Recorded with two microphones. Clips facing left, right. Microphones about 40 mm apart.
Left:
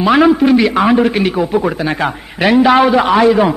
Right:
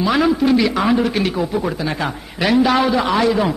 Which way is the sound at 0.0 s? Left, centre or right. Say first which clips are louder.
Left 6 dB; left.